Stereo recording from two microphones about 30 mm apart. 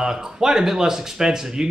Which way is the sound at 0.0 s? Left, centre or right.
Centre.